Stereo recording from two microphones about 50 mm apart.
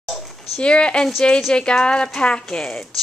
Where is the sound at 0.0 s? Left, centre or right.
Centre.